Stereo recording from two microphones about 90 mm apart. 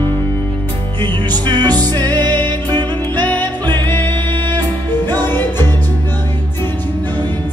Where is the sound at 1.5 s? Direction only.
55° right (ahead or behind).